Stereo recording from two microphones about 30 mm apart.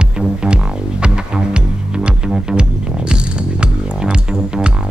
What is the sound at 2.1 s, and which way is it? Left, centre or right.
Music, right.